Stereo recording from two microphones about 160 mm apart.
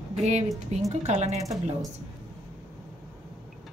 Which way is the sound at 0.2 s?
45° right (ahead or behind).